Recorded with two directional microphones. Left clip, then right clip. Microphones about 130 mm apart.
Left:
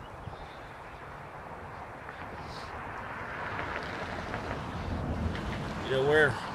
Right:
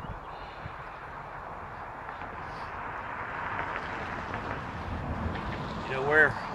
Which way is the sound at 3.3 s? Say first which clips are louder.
Right 2 dB; 85° right.